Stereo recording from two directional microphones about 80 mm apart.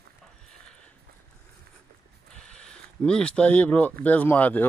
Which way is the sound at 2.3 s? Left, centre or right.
Centre.